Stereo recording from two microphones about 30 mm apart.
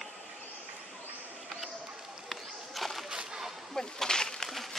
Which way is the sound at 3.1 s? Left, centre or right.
Right.